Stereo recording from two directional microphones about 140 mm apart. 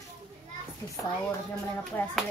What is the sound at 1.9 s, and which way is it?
Speech, 15° left (ahead or behind).